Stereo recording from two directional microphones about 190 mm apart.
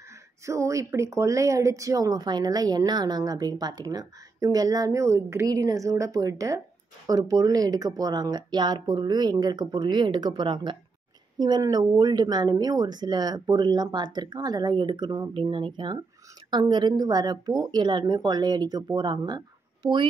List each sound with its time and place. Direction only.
0.5 s speech: 15° right (ahead or behind)